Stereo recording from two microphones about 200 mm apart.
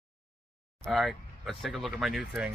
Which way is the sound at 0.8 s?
Centre (ahead or behind).